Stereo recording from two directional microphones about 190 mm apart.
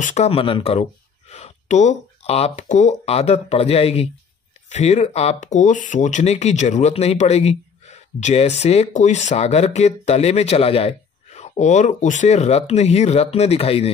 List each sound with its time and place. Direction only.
0.0 s speech: 35° left (ahead or behind)